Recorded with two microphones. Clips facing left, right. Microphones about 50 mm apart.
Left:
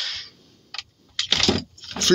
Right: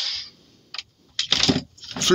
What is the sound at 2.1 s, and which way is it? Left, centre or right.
Speech, centre.